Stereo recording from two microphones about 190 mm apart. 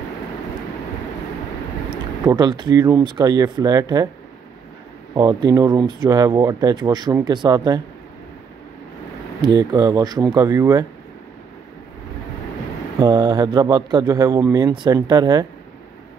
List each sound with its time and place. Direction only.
1.9 s speech: 20° right (ahead or behind)
5.1 s speech: 20° right (ahead or behind)
9.4 s speech: 20° right (ahead or behind)
13.0 s speech: 20° right (ahead or behind)